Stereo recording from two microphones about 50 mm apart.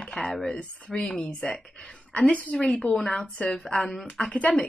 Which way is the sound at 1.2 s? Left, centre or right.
Left.